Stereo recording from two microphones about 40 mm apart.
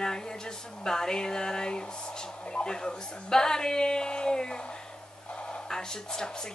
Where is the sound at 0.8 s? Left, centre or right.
Centre.